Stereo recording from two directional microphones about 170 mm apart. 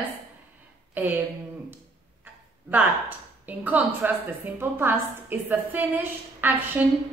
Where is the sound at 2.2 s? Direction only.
10° right (ahead or behind).